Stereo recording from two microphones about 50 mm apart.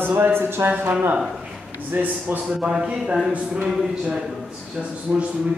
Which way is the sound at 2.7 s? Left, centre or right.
Centre.